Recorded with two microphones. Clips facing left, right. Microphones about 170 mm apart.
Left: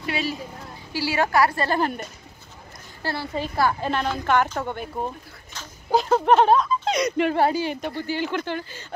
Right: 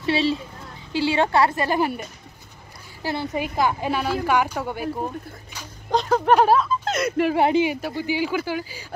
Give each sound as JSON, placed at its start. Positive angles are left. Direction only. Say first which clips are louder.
{"t": 0.0, "sound": "a woman's voice", "louder": "right 6 dB", "side_deg": -30}
{"t": 1.6, "sound": "a woman's voice", "louder": "right 1 dB", "side_deg": -10}
{"t": 5.9, "sound": "a sound", "louder": "left 1 dB", "side_deg": 5}
{"t": 6.3, "sound": "speech", "louder": "even", "side_deg": -5}
{"t": 7.4, "sound": "a woman's voice", "louder": "right 3 dB", "side_deg": -20}
{"t": 7.7, "sound": "a woman's voice", "louder": "right 2 dB", "side_deg": -5}